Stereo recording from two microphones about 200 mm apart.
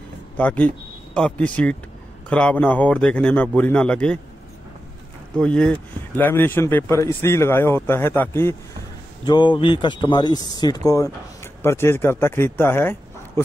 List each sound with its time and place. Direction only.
0.4 s speech: 5° left (ahead or behind)
5.4 s speech: 5° left (ahead or behind)
9.2 s speech: 20° left (ahead or behind)